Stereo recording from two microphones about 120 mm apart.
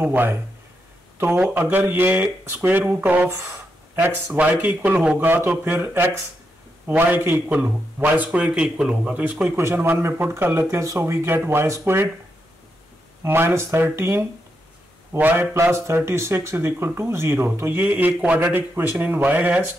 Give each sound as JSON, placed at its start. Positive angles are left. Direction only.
{"t": 0.0, "sound": "speech", "side_deg": -15}
{"t": 13.2, "sound": "speech", "side_deg": -20}